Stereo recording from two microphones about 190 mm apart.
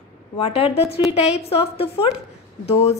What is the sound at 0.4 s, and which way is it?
A woman's voice, 30° left (ahead or behind).